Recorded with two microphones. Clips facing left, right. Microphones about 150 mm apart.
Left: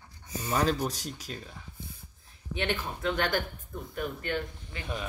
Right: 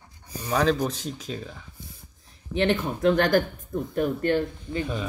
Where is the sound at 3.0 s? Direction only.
40° right (ahead or behind).